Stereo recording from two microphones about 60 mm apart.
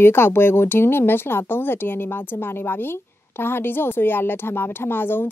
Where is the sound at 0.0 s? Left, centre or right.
Left.